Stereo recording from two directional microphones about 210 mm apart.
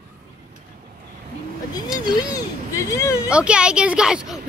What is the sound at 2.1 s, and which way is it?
Speech, 20° left (ahead or behind).